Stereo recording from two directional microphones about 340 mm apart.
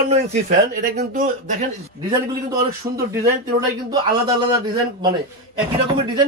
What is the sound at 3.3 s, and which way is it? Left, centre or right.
Speech, centre.